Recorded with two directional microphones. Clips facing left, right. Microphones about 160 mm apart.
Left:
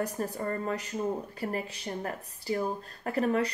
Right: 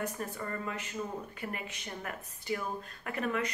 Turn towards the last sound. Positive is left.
turn(degrees=35)  # may be behind; listen again after turning